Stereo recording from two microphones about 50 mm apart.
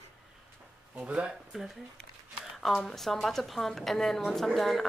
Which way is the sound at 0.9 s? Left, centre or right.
Right.